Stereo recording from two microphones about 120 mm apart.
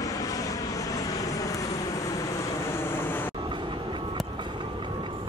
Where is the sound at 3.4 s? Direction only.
40° right (ahead or behind).